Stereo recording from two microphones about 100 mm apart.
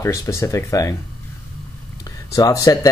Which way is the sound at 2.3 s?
35° left (ahead or behind).